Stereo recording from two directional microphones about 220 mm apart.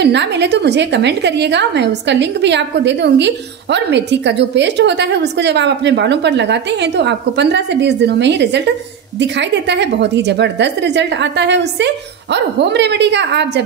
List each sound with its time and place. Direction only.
0.0 s a woman's voice: 50° right (ahead or behind)